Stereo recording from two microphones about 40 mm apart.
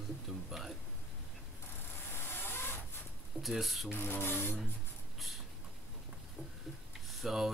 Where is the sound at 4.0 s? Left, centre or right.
Left.